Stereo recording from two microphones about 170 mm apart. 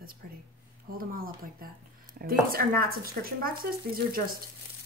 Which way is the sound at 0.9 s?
55° right (ahead or behind).